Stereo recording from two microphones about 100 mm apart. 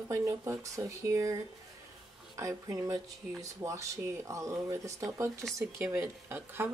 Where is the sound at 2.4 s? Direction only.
30° right (ahead or behind).